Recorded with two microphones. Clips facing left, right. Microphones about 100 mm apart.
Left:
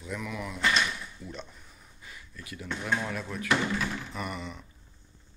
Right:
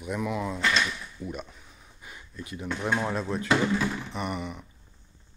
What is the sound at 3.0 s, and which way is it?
Speech, 25° right (ahead or behind).